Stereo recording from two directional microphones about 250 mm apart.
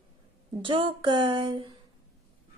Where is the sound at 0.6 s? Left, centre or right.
Centre.